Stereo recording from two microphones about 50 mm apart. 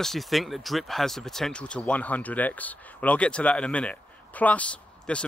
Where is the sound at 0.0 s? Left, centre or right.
Centre.